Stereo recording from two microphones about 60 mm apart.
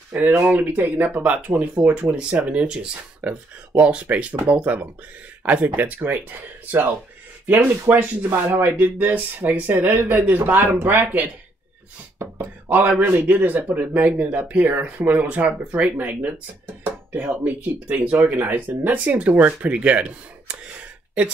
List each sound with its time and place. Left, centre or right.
0.1 s speech: right
2.1 s speech: centre
12.2 s a sound: right
13.0 s speech: right; by 21.3 s centre